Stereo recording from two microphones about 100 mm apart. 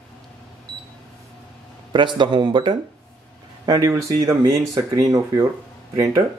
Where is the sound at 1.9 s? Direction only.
50° right (ahead or behind).